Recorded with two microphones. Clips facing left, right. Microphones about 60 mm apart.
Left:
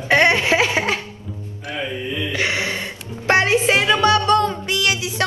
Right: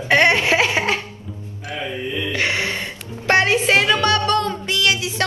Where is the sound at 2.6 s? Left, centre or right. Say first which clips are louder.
Even; right.